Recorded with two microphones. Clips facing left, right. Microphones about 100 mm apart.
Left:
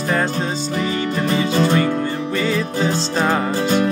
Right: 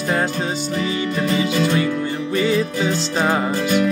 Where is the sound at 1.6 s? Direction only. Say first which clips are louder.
Left 4 dB; 45° left (ahead or behind).